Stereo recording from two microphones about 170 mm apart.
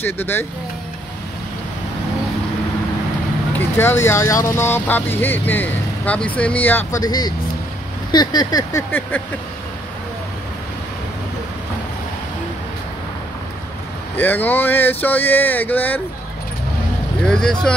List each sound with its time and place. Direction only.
0.0 s speech: 10° left (ahead or behind)
3.5 s speech: 15° left (ahead or behind)
7.0 s speech: 25° left (ahead or behind)
14.1 s speech: 10° left (ahead or behind)
17.2 s speech: 5° left (ahead or behind)